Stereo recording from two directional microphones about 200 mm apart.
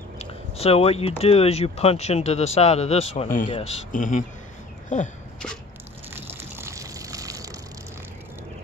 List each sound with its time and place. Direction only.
0.2 s speech: 30° left (ahead or behind)
4.8 s a sound: 35° left (ahead or behind)
6.6 s water: 15° right (ahead or behind)